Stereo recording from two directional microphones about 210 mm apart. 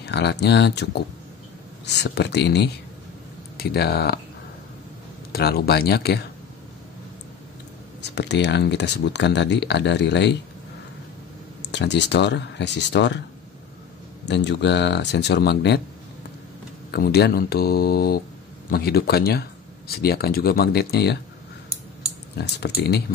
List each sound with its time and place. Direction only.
0.0 s speech: 55° left (ahead or behind)
5.3 s speech: 50° left (ahead or behind)
8.0 s speech: 55° left (ahead or behind)
11.6 s speech: 55° left (ahead or behind)
14.2 s speech: 55° left (ahead or behind)
16.9 s speech: 50° left (ahead or behind)
22.4 s speech: 50° left (ahead or behind)